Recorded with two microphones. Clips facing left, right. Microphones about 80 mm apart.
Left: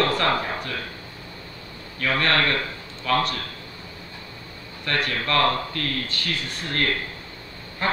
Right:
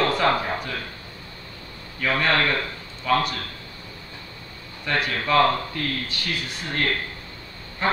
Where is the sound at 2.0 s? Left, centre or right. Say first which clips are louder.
Even; centre.